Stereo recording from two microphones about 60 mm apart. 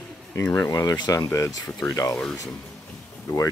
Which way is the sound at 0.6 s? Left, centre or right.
Left.